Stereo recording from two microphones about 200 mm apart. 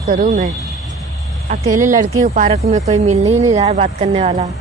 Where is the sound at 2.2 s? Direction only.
40° right (ahead or behind).